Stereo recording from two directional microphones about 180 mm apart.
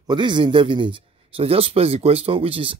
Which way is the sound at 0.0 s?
25° right (ahead or behind).